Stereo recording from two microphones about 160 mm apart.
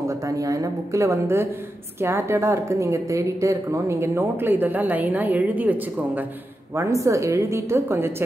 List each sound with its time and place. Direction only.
0.1 s a woman's voice: 20° right (ahead or behind)